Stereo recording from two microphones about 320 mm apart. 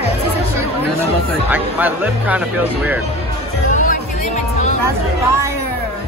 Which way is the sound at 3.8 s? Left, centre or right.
Left.